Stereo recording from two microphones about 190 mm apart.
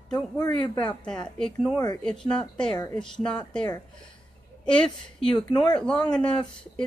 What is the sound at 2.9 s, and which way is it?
Speech, 5° left (ahead or behind).